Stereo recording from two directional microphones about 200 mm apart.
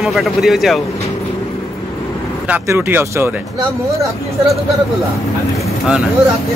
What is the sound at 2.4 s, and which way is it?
Speech, 10° right (ahead or behind).